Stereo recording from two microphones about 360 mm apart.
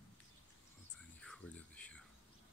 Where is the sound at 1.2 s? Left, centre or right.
Centre.